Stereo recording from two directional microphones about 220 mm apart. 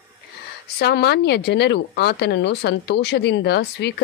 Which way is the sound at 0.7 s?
45° left (ahead or behind).